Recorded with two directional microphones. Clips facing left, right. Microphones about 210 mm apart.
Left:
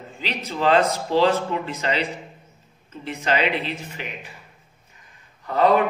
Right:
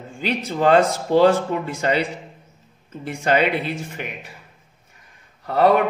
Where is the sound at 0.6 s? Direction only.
50° right (ahead or behind).